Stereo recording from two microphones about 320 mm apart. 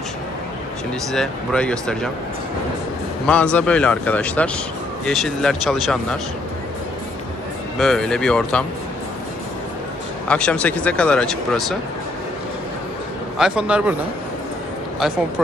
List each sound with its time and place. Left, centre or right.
1.1 s speech: centre
3.3 s speech: centre
7.8 s speech: centre
10.2 s speech: centre
13.4 s speech: centre
15.0 s speech: centre